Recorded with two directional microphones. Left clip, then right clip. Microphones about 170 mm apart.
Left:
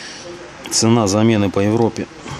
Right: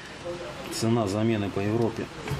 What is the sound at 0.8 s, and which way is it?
Speech, 60° left (ahead or behind).